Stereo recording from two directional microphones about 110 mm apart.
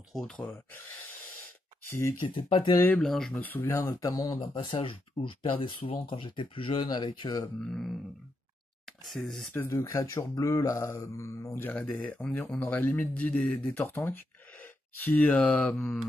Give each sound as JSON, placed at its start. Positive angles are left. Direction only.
{"t": 0.4, "sound": "speech", "side_deg": 15}
{"t": 1.9, "sound": "speech", "side_deg": 25}
{"t": 2.2, "sound": "speech", "side_deg": 50}
{"t": 3.0, "sound": "speech", "side_deg": 5}
{"t": 3.3, "sound": "speech", "side_deg": 15}
{"t": 3.9, "sound": "speech", "side_deg": 35}
{"t": 4.4, "sound": "speech", "side_deg": 50}
{"t": 7.6, "sound": "speech", "side_deg": 5}
{"t": 9.0, "sound": "speech", "side_deg": 0}
{"t": 9.7, "sound": "speech", "side_deg": 30}